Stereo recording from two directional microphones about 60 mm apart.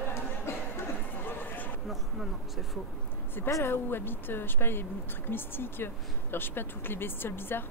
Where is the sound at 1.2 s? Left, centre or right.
Left.